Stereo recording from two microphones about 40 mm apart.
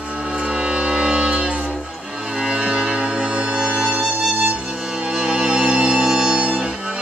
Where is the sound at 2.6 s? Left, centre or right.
Right.